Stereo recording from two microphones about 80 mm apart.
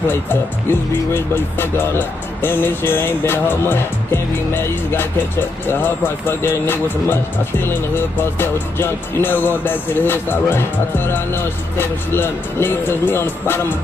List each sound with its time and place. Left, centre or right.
0.1 s speech: left